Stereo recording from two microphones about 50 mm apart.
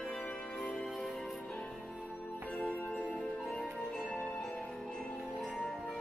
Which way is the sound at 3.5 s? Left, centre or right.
Centre.